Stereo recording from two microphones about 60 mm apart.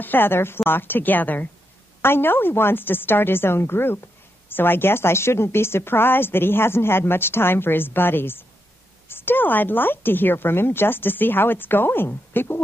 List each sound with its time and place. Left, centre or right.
0.0 s a woman's voice: left
2.0 s a woman's voice: left